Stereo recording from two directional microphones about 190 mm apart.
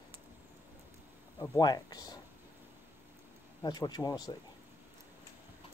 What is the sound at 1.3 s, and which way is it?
Speech, 20° left (ahead or behind).